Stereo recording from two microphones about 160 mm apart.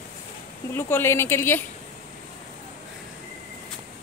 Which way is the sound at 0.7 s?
15° left (ahead or behind).